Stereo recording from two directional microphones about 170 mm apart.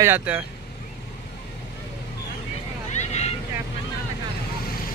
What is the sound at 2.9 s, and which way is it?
Vehicle, 40° left (ahead or behind).